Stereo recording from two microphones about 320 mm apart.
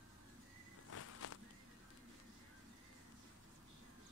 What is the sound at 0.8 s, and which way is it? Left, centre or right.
Walk, left.